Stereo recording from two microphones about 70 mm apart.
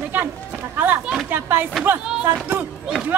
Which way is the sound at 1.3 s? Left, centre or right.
Right.